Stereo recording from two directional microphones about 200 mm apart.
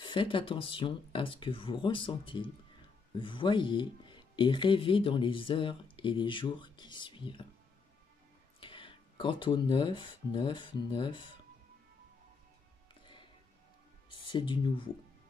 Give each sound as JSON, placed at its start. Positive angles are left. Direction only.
{"t": 0.0, "sound": "speech", "side_deg": 25}
{"t": 8.5, "sound": "speech", "side_deg": 25}
{"t": 13.0, "sound": "music", "side_deg": 25}
{"t": 14.2, "sound": "speech", "side_deg": 25}